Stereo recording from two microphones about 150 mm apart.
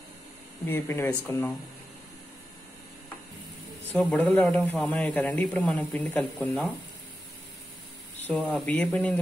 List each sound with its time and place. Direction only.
0.7 s speech: 15° left (ahead or behind)
3.9 s speech: 10° left (ahead or behind)
8.2 s speech: 10° left (ahead or behind)